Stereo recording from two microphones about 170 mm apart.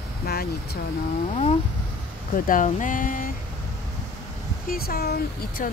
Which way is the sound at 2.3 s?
55° left (ahead or behind).